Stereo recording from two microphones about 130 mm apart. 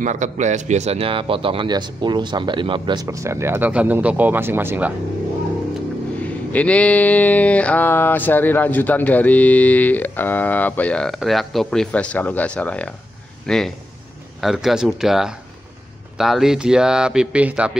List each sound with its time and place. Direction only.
0.0 s speech: 65° right (ahead or behind); by 4.9 s 15° right (ahead or behind)
6.2 s a sound: 10° left (ahead or behind)
13.5 s speech: 5° left (ahead or behind)